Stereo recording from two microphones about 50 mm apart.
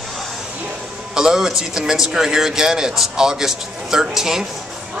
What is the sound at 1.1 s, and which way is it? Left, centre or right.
Speech, centre.